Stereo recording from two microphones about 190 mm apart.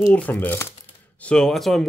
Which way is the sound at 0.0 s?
5° left (ahead or behind).